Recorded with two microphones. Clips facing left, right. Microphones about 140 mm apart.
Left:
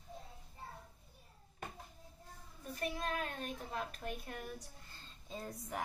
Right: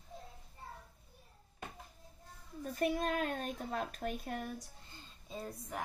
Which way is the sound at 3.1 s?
40° right (ahead or behind).